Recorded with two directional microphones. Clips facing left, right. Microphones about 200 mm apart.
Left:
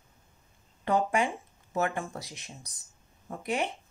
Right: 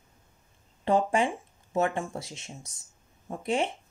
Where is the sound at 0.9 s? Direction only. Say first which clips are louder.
Right 2 dB; 30° right (ahead or behind).